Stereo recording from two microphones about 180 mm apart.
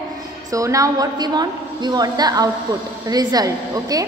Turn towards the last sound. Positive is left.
turn(degrees=-20)  # may be behind; listen again after turning